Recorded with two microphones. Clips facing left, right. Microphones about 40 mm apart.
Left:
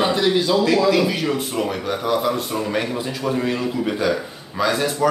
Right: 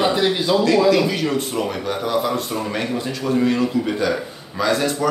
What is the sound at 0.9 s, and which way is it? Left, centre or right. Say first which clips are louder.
A man's voice: right 1 dB; centre.